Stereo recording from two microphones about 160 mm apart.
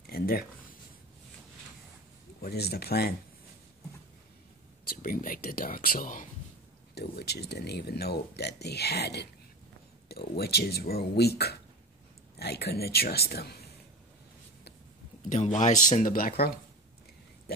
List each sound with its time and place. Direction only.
0.0 s a sound: 70° left (ahead or behind)
2.4 s speech: 80° left
4.8 s speech: 60° left (ahead or behind)
7.0 s speech: 90° left
15.2 s speech: 50° left (ahead or behind); by 16.5 s 70° left (ahead or behind)